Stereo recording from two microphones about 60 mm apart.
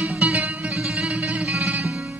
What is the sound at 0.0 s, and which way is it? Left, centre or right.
Music, centre.